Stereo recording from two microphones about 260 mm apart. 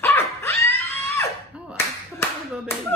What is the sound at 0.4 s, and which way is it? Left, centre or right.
Screaming, centre.